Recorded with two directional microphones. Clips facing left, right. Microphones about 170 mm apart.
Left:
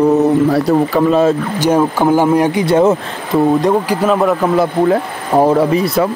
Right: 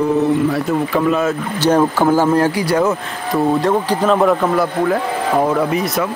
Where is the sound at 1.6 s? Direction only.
10° left (ahead or behind); by 3.0 s 25° left (ahead or behind).